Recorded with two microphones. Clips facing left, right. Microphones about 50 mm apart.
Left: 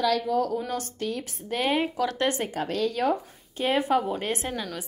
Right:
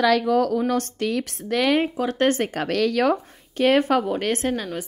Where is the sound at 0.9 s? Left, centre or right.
Right.